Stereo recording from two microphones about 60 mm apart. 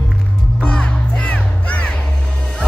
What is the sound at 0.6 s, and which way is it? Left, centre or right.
Music, centre.